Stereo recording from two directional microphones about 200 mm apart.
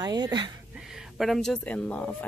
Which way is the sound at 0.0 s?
20° right (ahead or behind).